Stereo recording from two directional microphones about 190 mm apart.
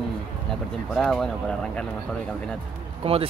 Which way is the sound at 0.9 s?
5° left (ahead or behind).